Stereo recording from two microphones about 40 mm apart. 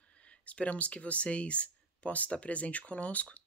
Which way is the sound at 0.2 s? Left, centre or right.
Left.